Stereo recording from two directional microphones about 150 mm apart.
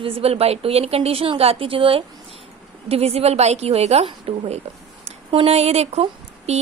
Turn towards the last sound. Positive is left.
turn(degrees=-45)  # may be behind; listen again after turning